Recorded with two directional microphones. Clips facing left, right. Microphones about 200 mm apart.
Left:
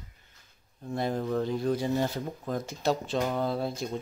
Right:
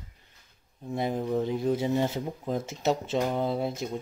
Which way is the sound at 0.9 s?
15° right (ahead or behind).